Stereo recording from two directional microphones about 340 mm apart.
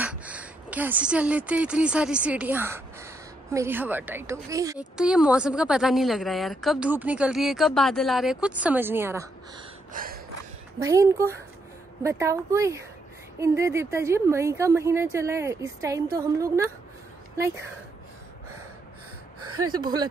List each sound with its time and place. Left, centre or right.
0.0 s speech: centre
9.9 s gasp: right
10.8 s a woman's voice: centre
19.6 s a woman's voice: centre